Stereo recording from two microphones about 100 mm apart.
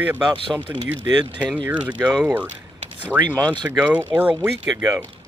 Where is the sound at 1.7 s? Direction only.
15° right (ahead or behind).